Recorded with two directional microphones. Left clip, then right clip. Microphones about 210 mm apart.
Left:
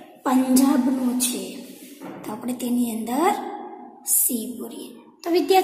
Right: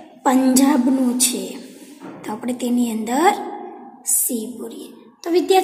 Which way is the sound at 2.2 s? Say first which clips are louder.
Right 5 dB; 15° right (ahead or behind).